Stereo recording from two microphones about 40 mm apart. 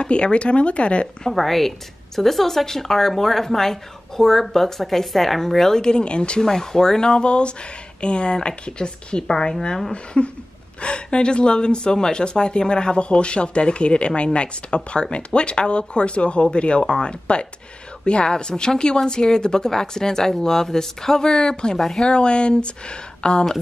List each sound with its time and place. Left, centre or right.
0.0 s speech: left
1.3 s a woman's voice: centre; by 6.4 s left
6.4 s a woman's voice: centre
10.1 s a woman's voice: left
21.7 s a woman's voice: centre
22.0 s speech: left